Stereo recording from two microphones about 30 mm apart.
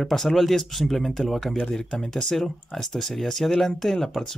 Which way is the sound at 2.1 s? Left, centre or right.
Centre.